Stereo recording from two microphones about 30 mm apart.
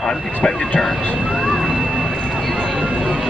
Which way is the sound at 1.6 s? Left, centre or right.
Centre.